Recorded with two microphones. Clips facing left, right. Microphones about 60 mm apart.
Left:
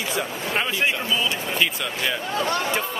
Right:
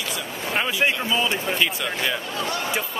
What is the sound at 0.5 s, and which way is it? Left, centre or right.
Speech, centre.